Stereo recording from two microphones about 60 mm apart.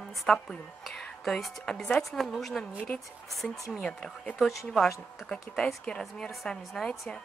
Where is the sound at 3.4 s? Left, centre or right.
Centre.